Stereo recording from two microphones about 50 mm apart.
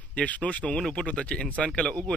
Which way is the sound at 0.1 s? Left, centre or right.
Left.